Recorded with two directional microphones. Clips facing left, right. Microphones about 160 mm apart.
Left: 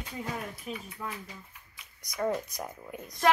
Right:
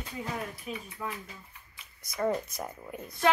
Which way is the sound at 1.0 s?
5° right (ahead or behind).